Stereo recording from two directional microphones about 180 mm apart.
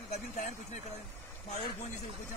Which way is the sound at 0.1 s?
40° left (ahead or behind).